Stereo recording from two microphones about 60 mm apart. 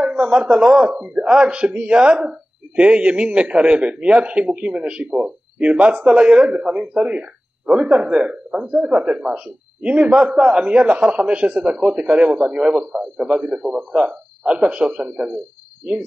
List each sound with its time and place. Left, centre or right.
0.0 s speech: centre